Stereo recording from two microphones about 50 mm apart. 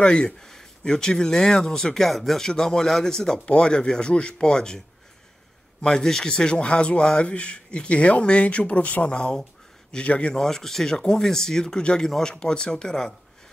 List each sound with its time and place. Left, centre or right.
0.0 s speech: centre
9.1 s speech: centre
10.4 s speech: centre